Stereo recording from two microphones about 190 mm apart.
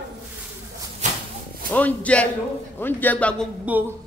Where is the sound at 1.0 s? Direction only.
40° right (ahead or behind).